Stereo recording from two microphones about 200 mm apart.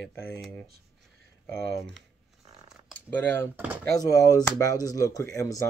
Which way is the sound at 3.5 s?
10° right (ahead or behind).